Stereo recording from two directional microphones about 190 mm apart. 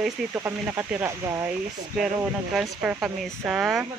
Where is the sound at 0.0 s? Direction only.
10° right (ahead or behind).